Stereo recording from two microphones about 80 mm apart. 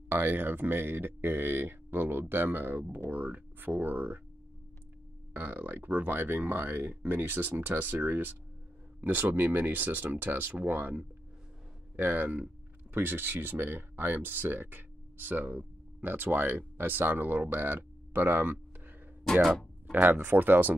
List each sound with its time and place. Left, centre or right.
0.1 s speech: right
5.3 s speech: right
19.9 s speech: right